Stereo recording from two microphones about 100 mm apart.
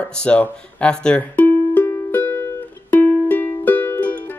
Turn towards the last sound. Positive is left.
turn(degrees=20)  # may be behind; listen again after turning